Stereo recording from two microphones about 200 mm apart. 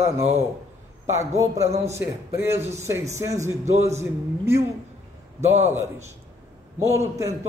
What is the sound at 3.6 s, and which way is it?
Speech, 35° right (ahead or behind).